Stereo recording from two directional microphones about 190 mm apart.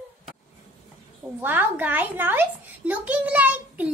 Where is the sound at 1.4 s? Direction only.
10° right (ahead or behind).